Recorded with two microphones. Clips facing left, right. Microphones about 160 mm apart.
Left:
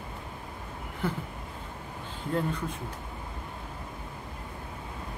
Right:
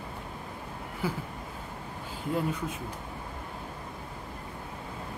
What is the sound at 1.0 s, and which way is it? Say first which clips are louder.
Speech: left 1 dB; 5° right (ahead or behind).